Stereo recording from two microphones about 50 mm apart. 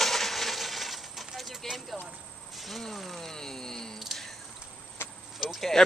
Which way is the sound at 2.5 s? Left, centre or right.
Centre.